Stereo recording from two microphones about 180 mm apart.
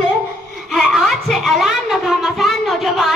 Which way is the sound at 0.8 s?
Centre (ahead or behind).